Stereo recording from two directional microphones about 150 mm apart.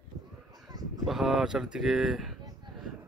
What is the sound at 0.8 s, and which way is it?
Honk, 25° right (ahead or behind).